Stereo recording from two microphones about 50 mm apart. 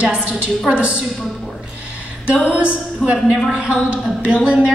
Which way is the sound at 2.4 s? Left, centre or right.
Right.